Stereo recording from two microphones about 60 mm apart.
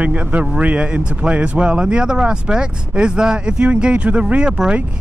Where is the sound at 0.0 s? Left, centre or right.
Right.